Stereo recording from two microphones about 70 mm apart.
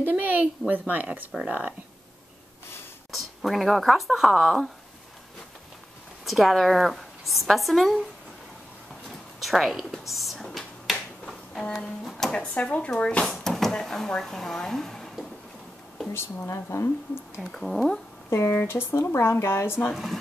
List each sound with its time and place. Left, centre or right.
0.0 s a woman's voice: right
3.1 s speech: centre
6.2 s a woman's voice: centre
9.4 s a sound: centre
11.8 s speech: centre
12.5 s speech: centre
16.1 s speech: left
17.4 s a woman's voice: centre
18.3 s speech: left